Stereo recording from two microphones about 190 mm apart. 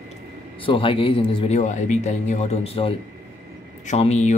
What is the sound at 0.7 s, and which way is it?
Speech, 30° left (ahead or behind).